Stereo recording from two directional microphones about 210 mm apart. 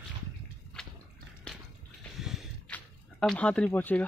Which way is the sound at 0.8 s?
5° left (ahead or behind).